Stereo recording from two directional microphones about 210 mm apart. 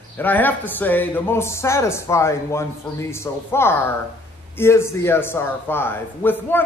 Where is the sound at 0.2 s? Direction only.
10° left (ahead or behind).